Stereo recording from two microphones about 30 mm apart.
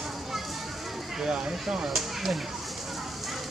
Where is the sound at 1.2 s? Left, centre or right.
Right.